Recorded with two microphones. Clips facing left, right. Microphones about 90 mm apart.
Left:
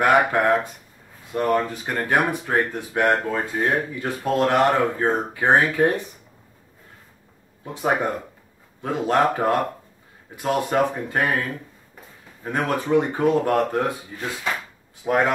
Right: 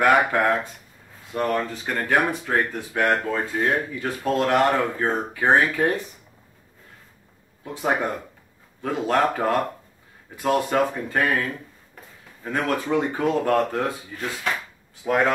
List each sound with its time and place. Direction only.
0.0 s speech: 20° left (ahead or behind)
7.6 s speech: 20° left (ahead or behind)
12.4 s speech: 25° left (ahead or behind)